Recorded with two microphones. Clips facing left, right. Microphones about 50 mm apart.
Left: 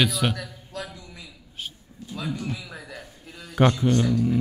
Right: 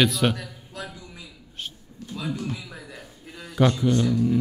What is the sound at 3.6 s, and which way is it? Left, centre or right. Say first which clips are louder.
Speech: left 1 dB; left.